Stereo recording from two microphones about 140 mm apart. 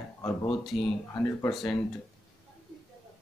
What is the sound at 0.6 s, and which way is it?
Speech, centre (ahead or behind).